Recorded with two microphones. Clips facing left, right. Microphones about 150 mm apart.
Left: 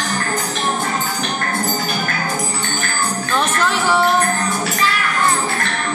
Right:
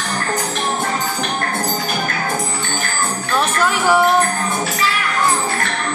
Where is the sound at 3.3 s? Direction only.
10° right (ahead or behind).